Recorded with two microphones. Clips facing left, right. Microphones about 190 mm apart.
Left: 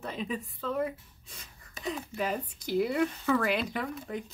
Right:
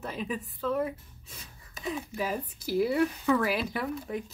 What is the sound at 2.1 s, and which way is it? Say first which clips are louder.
Speech: even; 5° right (ahead or behind).